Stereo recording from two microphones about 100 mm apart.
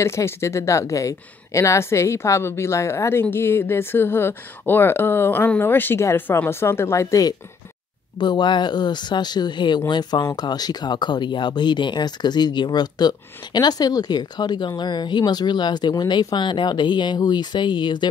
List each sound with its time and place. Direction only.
0.0 s a woman's voice: 30° left (ahead or behind)
8.2 s speech: 50° left (ahead or behind)